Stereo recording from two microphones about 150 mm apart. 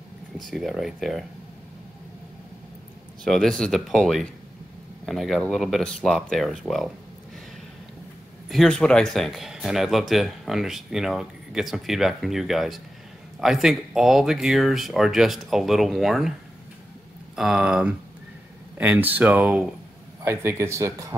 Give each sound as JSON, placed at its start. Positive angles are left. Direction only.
{"t": 0.4, "sound": "speech", "side_deg": 0}
{"t": 3.3, "sound": "speech", "side_deg": 5}
{"t": 8.5, "sound": "speech", "side_deg": 5}
{"t": 17.4, "sound": "speech", "side_deg": -5}
{"t": 20.2, "sound": "speech", "side_deg": -15}